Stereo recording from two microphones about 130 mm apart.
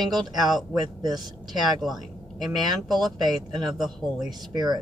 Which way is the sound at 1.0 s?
35° right (ahead or behind).